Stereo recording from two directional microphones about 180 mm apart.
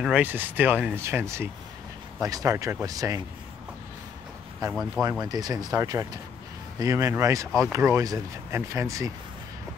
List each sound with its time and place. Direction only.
0.0 s speech: 5° right (ahead or behind)
4.6 s speech: 20° right (ahead or behind)